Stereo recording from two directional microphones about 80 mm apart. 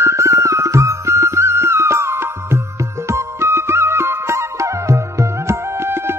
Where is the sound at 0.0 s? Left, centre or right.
Right.